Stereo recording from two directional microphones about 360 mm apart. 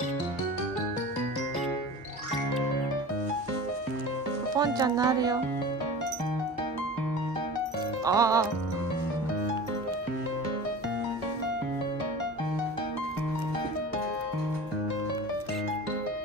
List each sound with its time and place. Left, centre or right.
4.6 s speech: centre
8.0 s music: centre